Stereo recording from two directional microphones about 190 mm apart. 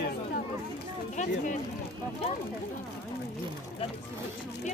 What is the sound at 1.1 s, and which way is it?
Speech, 40° left (ahead or behind).